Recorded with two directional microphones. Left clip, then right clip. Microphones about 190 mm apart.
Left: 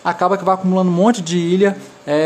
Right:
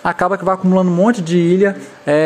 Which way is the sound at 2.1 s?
25° right (ahead or behind).